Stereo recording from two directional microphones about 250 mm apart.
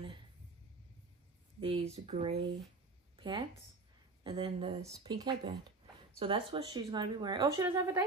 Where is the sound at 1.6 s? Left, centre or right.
Right.